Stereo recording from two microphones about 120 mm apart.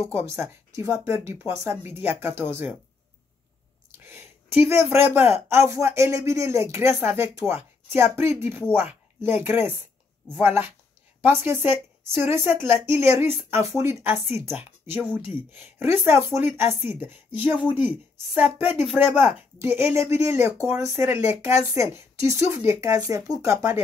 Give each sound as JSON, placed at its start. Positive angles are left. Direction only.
{"t": 0.1, "sound": "speech", "side_deg": -20}
{"t": 4.0, "sound": "speech", "side_deg": -20}
{"t": 16.3, "sound": "speech", "side_deg": -20}